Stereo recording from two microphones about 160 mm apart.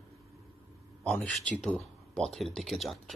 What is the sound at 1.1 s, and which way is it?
Speech, 5° left (ahead or behind).